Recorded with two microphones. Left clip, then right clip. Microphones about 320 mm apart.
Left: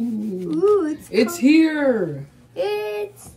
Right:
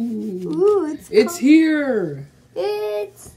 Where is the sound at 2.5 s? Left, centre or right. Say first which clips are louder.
Right 1 dB; centre.